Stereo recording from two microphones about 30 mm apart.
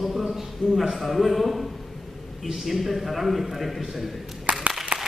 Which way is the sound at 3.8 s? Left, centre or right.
Centre.